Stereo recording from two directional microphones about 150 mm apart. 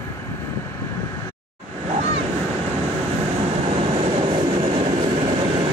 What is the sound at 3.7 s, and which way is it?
Train, 40° right (ahead or behind).